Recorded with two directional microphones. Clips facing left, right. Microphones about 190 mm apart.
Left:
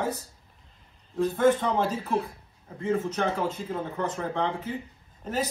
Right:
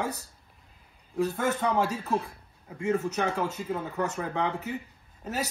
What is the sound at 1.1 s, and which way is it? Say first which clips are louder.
Speech: left 5 dB; 10° right (ahead or behind).